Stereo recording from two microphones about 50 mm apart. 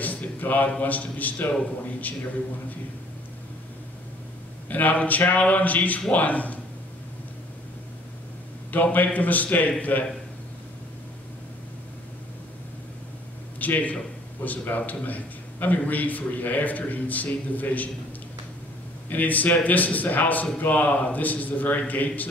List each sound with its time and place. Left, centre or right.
0.0 s a sound: left
0.7 s a man's voice: left
4.6 s a man's voice: left
8.7 s a man's voice: left
13.6 s a man's voice: left
19.0 s a man's voice: left